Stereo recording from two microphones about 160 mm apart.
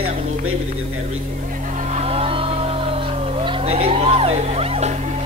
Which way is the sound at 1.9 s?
40° right (ahead or behind).